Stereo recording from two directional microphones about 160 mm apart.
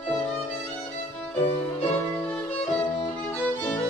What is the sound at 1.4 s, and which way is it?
Music, 40° left (ahead or behind).